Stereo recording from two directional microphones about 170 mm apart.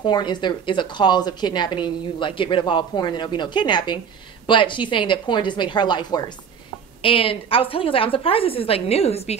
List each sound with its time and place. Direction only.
0.0 s a woman's voice: 25° left (ahead or behind)